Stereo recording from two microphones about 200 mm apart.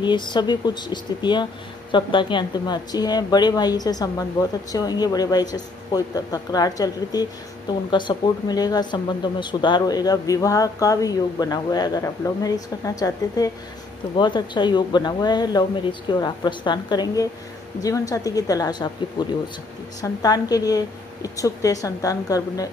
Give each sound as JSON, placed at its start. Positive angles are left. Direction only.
{"t": 0.0, "sound": "a woman's voice", "side_deg": 20}